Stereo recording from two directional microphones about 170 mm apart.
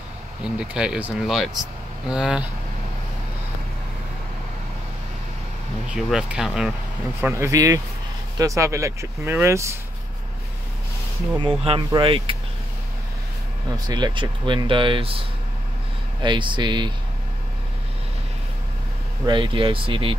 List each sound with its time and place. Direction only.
0.6 s speech: 5° right (ahead or behind)
5.9 s speech: 5° right (ahead or behind)
7.2 s speech: 15° right (ahead or behind)
11.3 s speech: 30° right (ahead or behind)
13.7 s speech: 25° right (ahead or behind)
19.2 s speech: 30° right (ahead or behind)